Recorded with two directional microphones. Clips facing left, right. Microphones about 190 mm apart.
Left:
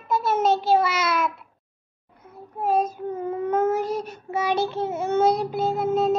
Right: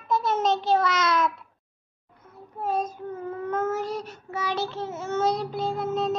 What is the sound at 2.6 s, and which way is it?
Baby cry, 10° left (ahead or behind).